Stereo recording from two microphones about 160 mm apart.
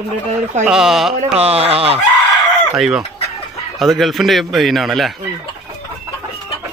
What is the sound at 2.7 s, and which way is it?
Chicken, 5° right (ahead or behind).